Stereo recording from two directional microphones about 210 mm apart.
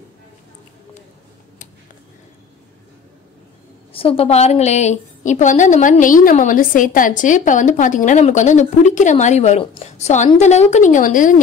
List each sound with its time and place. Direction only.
3.9 s a woman's voice: 25° left (ahead or behind)